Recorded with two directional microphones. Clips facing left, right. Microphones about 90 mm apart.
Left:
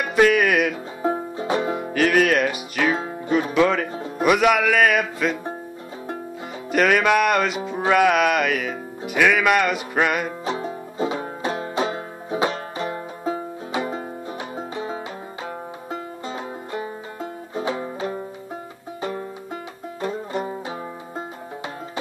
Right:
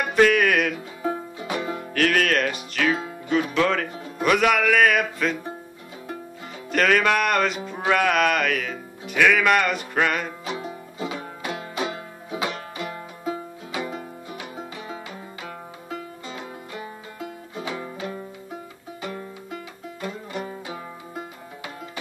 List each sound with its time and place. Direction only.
0.0 s music: 5° left (ahead or behind)
1.0 s music: 30° left (ahead or behind)
1.7 s music: 10° left (ahead or behind)
3.5 s speech: 5° left (ahead or behind)
6.7 s speech: 5° left (ahead or behind)
10.4 s banjo: 35° left (ahead or behind)
15.9 s music: 30° left (ahead or behind)